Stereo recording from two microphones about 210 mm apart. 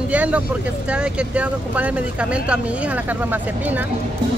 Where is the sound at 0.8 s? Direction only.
5° right (ahead or behind).